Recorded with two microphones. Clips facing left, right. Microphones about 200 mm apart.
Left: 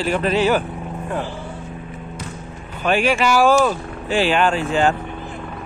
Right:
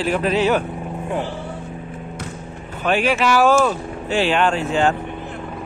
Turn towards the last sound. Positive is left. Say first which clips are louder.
# even
turn(degrees=0)  # may be behind; listen again after turning